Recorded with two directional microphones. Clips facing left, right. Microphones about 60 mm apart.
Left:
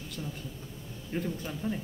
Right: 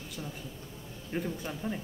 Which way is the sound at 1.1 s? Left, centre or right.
Centre.